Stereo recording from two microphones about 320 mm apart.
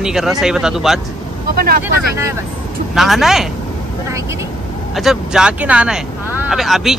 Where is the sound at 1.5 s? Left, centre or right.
Right.